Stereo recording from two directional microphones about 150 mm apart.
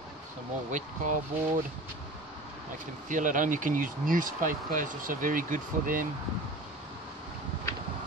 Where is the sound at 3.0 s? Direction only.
60° right (ahead or behind).